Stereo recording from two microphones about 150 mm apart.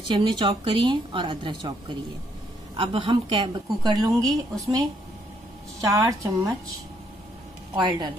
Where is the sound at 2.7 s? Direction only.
35° right (ahead or behind).